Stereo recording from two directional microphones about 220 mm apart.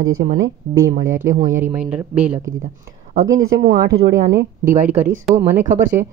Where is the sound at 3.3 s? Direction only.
60° right (ahead or behind).